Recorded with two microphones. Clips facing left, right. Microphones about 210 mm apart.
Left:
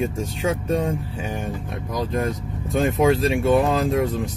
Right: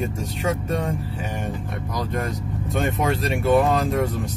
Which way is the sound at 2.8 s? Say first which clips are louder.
Left 5 dB; centre (ahead or behind).